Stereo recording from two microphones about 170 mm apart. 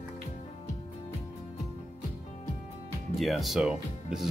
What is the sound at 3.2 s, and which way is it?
Speech, centre (ahead or behind).